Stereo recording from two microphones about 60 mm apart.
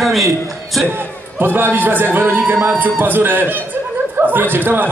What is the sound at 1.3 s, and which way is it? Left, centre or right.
Speech, right.